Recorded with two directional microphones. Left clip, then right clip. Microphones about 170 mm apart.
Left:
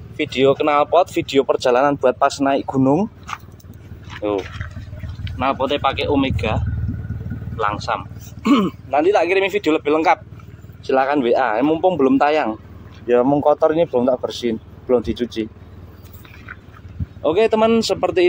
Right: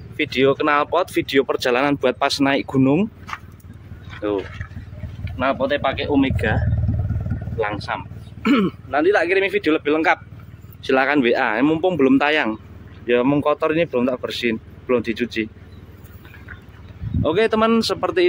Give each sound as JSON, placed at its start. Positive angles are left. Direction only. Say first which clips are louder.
{"t": 0.2, "sound": "speech", "louder": "left 2 dB", "side_deg": -5}
{"t": 5.4, "sound": "speech", "louder": "left 1 dB", "side_deg": 5}
{"t": 10.8, "sound": "speech", "louder": "even", "side_deg": -20}
{"t": 17.2, "sound": "speech", "louder": "left 2 dB", "side_deg": -5}